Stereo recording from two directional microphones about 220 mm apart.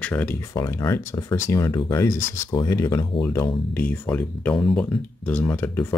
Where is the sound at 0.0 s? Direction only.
10° left (ahead or behind).